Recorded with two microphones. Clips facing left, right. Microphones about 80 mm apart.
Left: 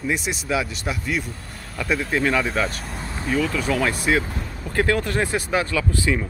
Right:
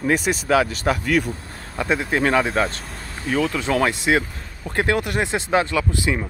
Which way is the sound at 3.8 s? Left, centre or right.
Right.